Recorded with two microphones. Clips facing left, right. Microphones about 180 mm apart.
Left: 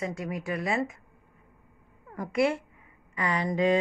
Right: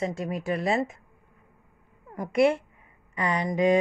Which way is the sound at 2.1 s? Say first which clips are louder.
Right 4 dB; 20° right (ahead or behind).